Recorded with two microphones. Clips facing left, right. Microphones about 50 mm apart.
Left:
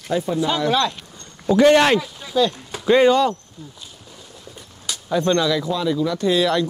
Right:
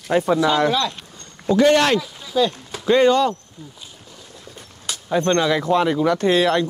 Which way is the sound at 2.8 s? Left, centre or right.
Centre.